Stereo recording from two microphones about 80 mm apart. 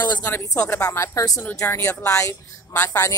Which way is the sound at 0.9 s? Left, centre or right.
Left.